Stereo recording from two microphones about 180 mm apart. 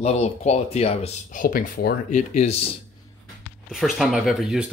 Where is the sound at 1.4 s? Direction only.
50° left (ahead or behind).